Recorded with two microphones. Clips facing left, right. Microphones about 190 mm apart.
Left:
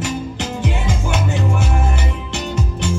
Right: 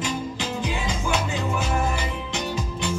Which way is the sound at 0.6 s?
60° left (ahead or behind).